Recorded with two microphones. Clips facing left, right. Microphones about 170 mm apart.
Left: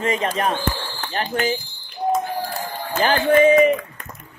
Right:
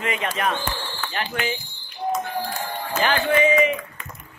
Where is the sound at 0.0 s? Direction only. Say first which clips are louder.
Left 4 dB; 35° left (ahead or behind).